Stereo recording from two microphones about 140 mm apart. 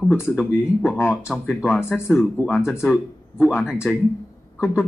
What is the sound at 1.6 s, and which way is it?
Speech, 15° left (ahead or behind).